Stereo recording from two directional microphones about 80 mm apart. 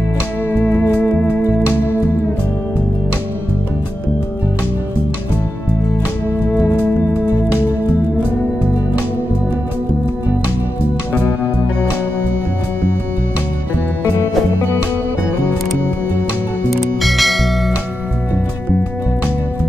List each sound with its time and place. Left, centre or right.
0.7 s music: left
16.7 s music: centre